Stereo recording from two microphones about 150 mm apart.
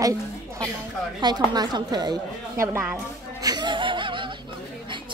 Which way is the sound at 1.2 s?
30° right (ahead or behind).